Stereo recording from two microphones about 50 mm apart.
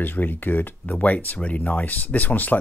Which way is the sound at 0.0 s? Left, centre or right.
Left.